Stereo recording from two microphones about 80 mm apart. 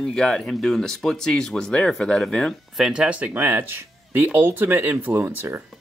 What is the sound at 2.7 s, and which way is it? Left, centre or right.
Speech, centre.